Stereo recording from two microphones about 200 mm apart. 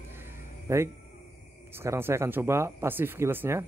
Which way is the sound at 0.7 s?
15° right (ahead or behind).